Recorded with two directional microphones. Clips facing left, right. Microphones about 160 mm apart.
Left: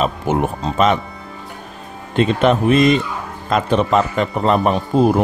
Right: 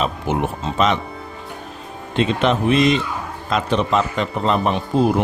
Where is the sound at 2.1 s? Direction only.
50° left (ahead or behind).